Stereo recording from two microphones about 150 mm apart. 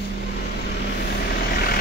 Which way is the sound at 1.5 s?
85° left.